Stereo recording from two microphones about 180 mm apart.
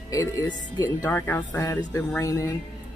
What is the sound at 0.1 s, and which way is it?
Speech, 15° left (ahead or behind).